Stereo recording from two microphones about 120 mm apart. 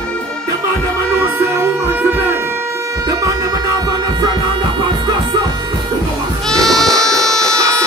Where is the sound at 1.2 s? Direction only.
20° right (ahead or behind).